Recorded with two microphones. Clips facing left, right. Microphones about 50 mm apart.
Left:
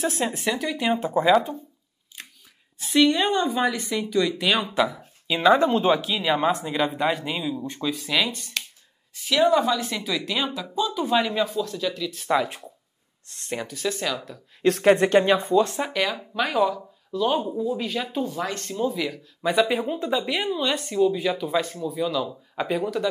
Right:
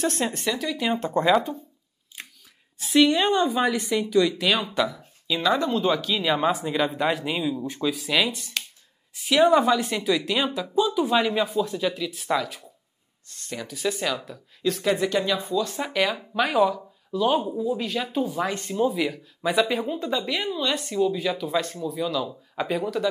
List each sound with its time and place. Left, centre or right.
0.0 s speech: centre
2.8 s speech: centre
4.8 s speech: left
6.1 s speech: centre
12.4 s speech: left
13.7 s speech: centre
14.6 s speech: left
15.9 s speech: centre